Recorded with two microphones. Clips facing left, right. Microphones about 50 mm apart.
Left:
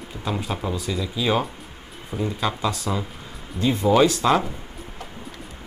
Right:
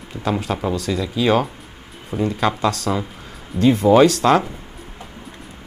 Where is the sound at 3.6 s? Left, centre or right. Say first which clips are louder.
Right 5 dB; right.